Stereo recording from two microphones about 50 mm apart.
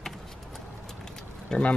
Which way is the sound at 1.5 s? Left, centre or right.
Left.